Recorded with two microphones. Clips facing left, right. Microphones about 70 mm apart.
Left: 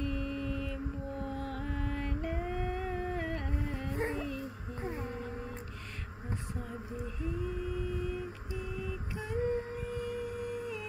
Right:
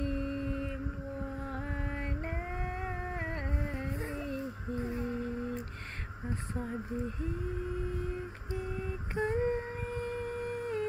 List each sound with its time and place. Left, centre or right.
0.0 s mantra: right
1.4 s music: right
3.9 s dog: left
4.7 s humming: left
7.7 s humming: right